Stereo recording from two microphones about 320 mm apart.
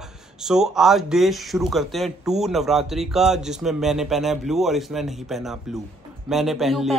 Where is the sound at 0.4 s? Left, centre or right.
Centre.